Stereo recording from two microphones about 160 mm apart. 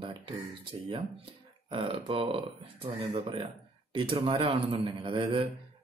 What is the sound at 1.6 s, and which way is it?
Speech, 30° right (ahead or behind).